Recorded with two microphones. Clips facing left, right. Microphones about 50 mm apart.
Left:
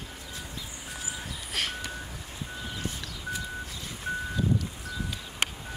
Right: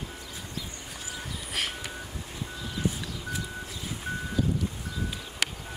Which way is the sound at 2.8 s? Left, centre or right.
Right.